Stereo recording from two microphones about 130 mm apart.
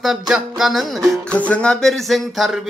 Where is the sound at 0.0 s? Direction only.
Centre (ahead or behind).